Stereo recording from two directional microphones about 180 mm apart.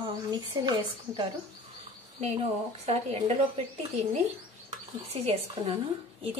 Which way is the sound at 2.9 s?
35° right (ahead or behind).